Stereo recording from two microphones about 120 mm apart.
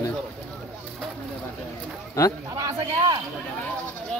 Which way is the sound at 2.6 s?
30° right (ahead or behind).